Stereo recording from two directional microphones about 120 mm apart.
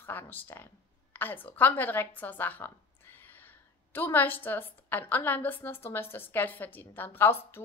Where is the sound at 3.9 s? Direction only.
15° left (ahead or behind).